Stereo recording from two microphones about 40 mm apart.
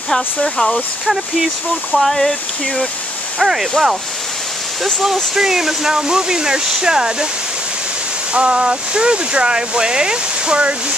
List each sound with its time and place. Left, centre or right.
0.1 s speech: centre
1.0 s speech: centre
2.0 s speech: centre
3.3 s speech: centre
5.0 s speech: centre
8.3 s speech: right